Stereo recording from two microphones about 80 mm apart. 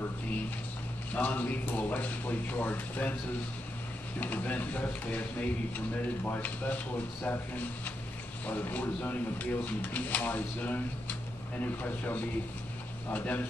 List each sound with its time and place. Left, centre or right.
1.1 s speech: centre
4.2 s speech: left